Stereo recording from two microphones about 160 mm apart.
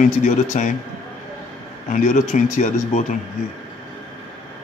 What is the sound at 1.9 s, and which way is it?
A man's voice, 50° left (ahead or behind).